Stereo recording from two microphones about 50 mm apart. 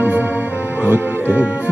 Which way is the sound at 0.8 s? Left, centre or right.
Right.